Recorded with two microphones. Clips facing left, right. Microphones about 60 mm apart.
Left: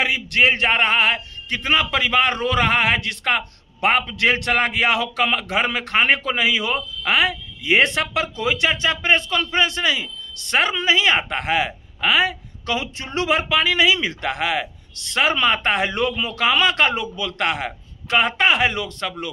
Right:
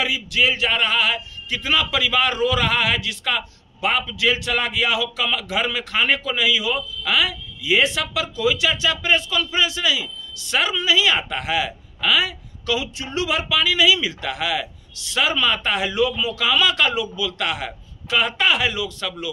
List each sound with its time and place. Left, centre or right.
0.0 s speech: left
6.7 s speech: left